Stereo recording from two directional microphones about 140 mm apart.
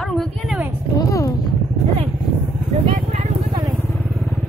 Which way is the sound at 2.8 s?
50° right (ahead or behind).